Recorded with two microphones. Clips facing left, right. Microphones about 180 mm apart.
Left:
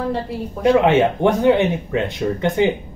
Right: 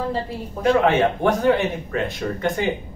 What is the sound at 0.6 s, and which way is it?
Speech, 20° left (ahead or behind).